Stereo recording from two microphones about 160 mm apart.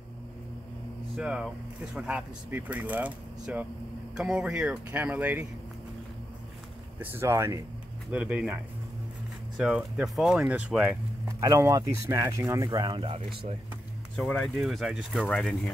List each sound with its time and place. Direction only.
1.1 s speech: 5° right (ahead or behind)
7.0 s speech: 15° right (ahead or behind)
9.6 s speech: 5° right (ahead or behind)
11.2 s speech: 20° right (ahead or behind)
14.1 s speech: 5° left (ahead or behind)